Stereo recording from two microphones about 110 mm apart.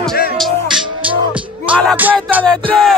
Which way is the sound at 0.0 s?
Centre (ahead or behind).